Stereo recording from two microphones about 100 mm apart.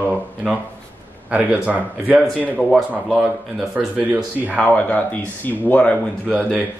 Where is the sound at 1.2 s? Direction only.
15° right (ahead or behind).